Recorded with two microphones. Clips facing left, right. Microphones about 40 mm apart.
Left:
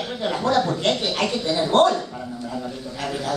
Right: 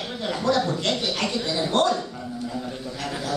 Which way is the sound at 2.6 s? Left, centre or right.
Centre.